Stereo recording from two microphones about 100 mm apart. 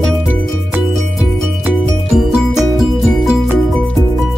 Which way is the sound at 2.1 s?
5° right (ahead or behind).